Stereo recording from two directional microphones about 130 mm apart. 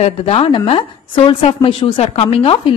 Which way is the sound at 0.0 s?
50° left (ahead or behind).